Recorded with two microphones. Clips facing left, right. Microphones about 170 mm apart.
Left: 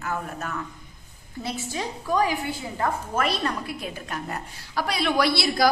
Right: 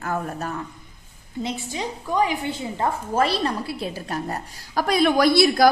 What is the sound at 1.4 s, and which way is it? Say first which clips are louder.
A woman's voice: right 2 dB; 15° right (ahead or behind).